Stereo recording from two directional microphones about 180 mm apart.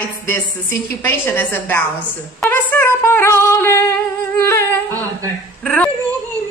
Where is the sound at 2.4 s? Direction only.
10° left (ahead or behind).